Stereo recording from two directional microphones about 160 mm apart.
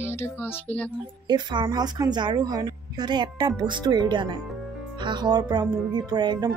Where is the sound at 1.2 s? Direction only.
25° right (ahead or behind).